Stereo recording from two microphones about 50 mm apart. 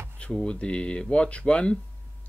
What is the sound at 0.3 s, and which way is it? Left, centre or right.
Speech, centre.